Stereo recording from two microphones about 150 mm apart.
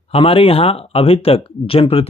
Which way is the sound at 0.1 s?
40° left (ahead or behind).